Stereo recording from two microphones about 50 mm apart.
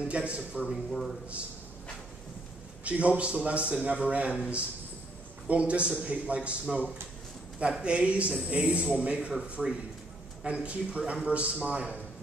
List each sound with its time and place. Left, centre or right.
0.1 s a man's voice: right
0.7 s a man's voice: centre
2.8 s a man's voice: right
7.8 s a man's voice: right
9.3 s speech: centre
10.4 s a man's voice: right